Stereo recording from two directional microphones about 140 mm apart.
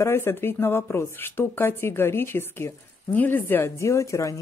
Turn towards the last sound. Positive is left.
turn(degrees=20)  # may be behind; listen again after turning